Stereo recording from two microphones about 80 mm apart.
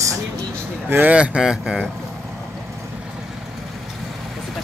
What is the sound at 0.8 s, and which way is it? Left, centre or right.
Speech, right.